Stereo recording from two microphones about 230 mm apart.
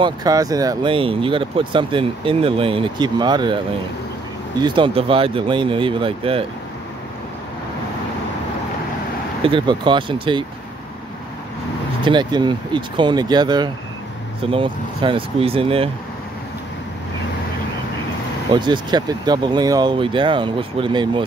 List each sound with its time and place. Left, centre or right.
0.0 s speech: centre
4.6 s speech: right
9.4 s speech: right
12.0 s speech: centre
18.5 s speech: centre